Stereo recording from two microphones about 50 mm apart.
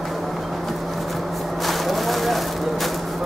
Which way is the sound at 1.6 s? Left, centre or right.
Centre.